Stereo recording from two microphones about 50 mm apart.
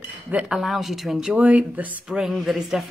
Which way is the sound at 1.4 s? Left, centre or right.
Right.